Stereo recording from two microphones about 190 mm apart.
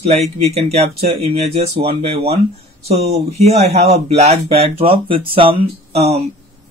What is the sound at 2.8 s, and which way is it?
Speech, 30° right (ahead or behind).